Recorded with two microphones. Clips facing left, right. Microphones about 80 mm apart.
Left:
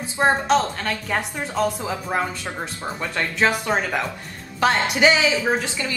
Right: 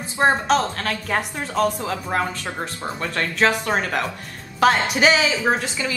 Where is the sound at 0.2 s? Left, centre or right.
Centre.